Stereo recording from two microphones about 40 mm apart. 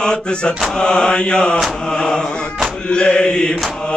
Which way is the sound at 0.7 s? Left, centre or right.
Left.